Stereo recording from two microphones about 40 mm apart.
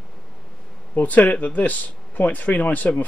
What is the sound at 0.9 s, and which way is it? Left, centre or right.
Speech, left.